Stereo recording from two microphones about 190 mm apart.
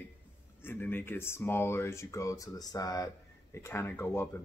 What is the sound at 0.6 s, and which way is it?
Speech, 10° left (ahead or behind).